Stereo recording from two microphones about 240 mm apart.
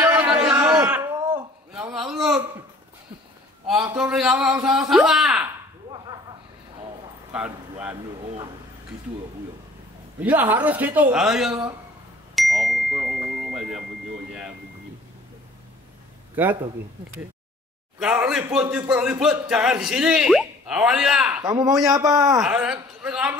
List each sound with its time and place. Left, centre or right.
0.0 s a sound: centre
3.8 s speech: centre
7.3 s speech: centre
8.2 s a man's voice: right
10.2 s speech: centre
12.4 s bicycle bell: centre
13.5 s tuning fork: centre
16.4 s speech: centre
17.9 s speech: centre
21.4 s speech: centre
22.4 s speech: centre